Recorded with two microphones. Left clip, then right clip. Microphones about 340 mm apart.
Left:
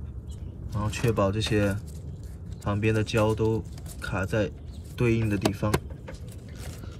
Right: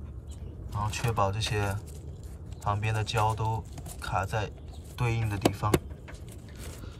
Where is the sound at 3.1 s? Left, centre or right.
Centre.